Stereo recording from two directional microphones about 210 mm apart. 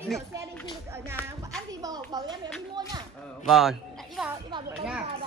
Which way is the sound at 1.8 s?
20° right (ahead or behind).